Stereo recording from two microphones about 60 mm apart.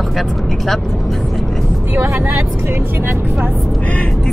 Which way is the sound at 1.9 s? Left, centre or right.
Right.